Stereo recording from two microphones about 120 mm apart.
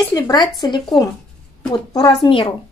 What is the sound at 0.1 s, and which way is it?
Speech, 35° left (ahead or behind).